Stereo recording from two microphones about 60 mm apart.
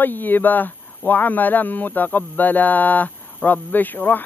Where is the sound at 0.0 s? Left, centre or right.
Left.